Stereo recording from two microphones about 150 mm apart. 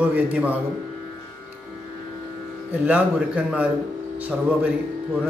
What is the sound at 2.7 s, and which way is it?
A man's voice, 10° right (ahead or behind).